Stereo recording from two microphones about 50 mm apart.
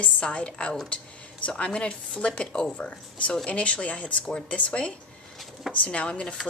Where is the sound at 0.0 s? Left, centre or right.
Left.